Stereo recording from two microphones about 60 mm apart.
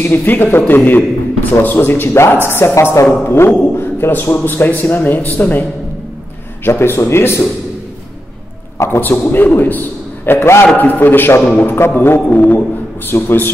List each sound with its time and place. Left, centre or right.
0.0 s speech: left
0.3 s a man's voice: left
6.6 s speech: left
8.7 s a man's voice: left
9.3 s a man's voice: left
12.3 s speech: left
12.5 s a man's voice: left